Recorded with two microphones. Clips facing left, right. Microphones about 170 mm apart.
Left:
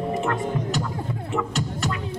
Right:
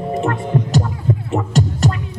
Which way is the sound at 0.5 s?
40° right (ahead or behind).